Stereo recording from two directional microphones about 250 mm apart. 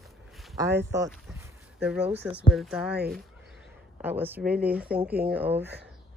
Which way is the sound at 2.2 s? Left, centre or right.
Centre.